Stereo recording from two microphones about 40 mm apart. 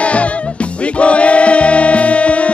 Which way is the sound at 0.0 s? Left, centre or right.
Left.